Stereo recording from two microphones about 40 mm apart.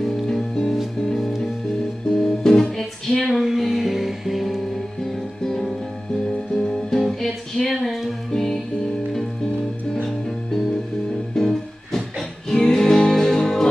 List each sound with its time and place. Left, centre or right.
0.0 s music: centre
3.4 s music: centre
5.4 s music: centre
7.8 s music: centre
8.3 s music: centre
11.3 s music: centre